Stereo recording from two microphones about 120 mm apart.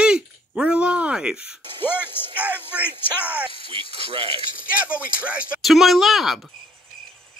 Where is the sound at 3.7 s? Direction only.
50° right (ahead or behind).